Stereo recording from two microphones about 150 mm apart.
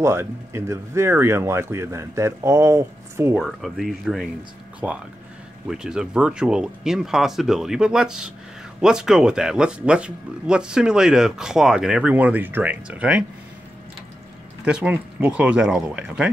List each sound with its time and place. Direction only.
0.0 s speech: 15° right (ahead or behind)
3.3 s speech: centre (ahead or behind)
14.6 s speech: 5° right (ahead or behind)